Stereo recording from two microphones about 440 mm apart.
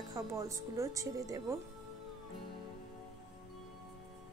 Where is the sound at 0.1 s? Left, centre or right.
Centre.